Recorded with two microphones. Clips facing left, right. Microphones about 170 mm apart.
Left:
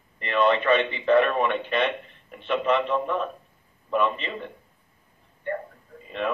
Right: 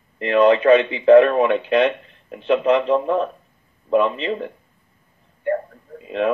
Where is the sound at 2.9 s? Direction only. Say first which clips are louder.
Right 7 dB; 40° right (ahead or behind).